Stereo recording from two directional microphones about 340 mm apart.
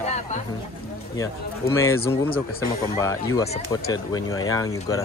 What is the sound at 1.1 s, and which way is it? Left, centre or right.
Speech, centre.